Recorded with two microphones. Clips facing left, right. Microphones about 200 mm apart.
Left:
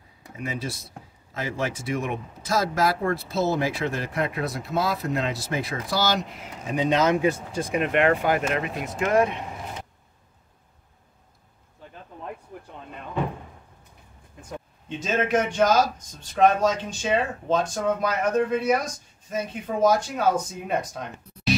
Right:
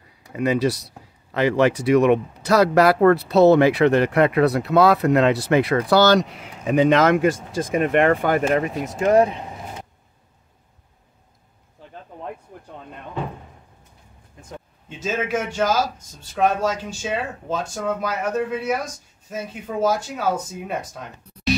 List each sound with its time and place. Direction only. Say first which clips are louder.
0.3 s speech: right 12 dB; 70° right (ahead or behind); by 7.7 s 90° right
7.7 s speech: right 4 dB; 50° right (ahead or behind); by 9.4 s 35° right (ahead or behind)
14.9 s a man's voice: even; 5° right (ahead or behind)